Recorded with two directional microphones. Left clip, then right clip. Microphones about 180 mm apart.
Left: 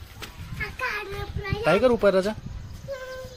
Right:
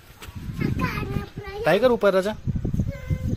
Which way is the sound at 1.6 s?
10° right (ahead or behind).